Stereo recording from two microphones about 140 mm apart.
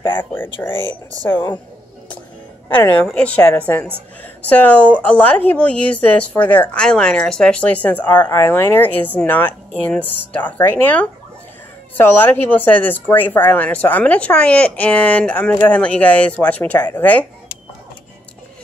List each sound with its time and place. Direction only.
0.2 s speech: 15° left (ahead or behind)
3.1 s speech: 10° left (ahead or behind)
8.1 s speech: 30° left (ahead or behind)
8.4 s speech: 15° left (ahead or behind)